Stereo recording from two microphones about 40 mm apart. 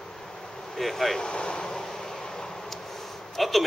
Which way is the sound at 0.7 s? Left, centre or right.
Centre.